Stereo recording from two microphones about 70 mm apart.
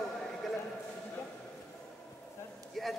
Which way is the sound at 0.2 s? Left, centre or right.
Centre.